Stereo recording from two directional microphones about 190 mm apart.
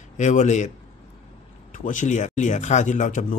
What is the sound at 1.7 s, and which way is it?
A man's voice, 40° left (ahead or behind).